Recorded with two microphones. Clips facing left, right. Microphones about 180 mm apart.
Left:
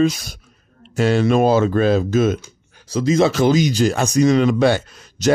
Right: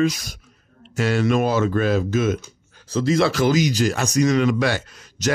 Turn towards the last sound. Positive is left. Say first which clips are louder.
# left 5 dB
turn(degrees=30)  # may be behind; listen again after turning